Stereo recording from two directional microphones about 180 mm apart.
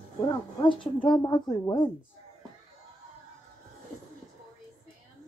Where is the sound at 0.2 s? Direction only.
25° left (ahead or behind).